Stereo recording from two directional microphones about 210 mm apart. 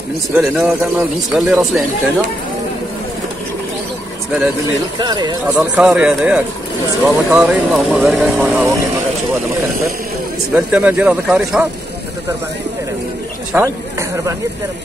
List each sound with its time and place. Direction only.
0.3 s speech: 5° right (ahead or behind)
4.9 s speech: 20° right (ahead or behind)
5.8 s speech: 5° right (ahead or behind)
10.5 s speech: 5° right (ahead or behind)
13.5 s speech: 10° right (ahead or behind)